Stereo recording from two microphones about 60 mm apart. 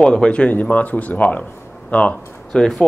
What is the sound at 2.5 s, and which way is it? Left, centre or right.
Speech, centre.